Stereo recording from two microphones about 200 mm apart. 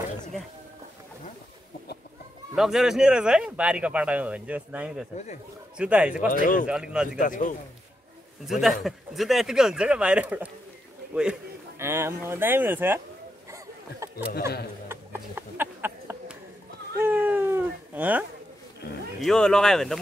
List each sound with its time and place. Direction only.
2.5 s speech: centre (ahead or behind)
5.1 s speech: 35° left (ahead or behind)
5.8 s speech: 5° right (ahead or behind)
6.3 s speech: 40° left (ahead or behind)
6.7 s speech: 5° right (ahead or behind)
7.2 s speech: 40° left (ahead or behind)
8.5 s speech: centre (ahead or behind)
11.8 s speech: 10° right (ahead or behind)
13.5 s a sound: 15° right (ahead or behind)
19.2 s speech: 5° left (ahead or behind)